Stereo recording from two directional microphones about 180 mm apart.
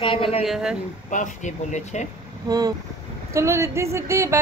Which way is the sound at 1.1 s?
45° left (ahead or behind).